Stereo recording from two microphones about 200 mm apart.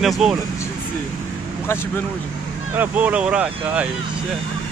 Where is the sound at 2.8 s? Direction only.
5° right (ahead or behind).